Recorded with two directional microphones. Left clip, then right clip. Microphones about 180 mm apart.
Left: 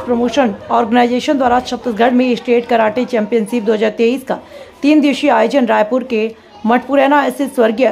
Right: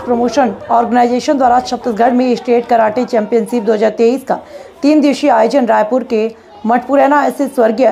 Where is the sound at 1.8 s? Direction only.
Centre (ahead or behind).